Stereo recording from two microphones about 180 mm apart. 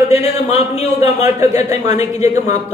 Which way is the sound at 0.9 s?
20° right (ahead or behind).